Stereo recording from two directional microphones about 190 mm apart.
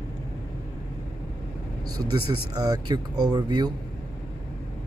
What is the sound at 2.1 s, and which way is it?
Speech, 20° right (ahead or behind).